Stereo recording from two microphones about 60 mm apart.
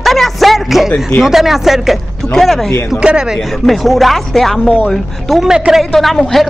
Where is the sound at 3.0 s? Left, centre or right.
Centre.